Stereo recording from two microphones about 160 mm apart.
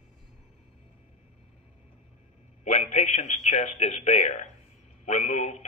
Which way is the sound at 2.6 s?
45° left (ahead or behind).